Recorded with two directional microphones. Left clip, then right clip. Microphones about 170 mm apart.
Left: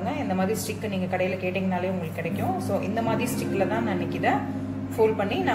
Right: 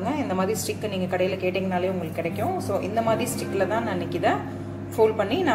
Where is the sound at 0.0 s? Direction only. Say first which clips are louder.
Right 2 dB; 35° right (ahead or behind).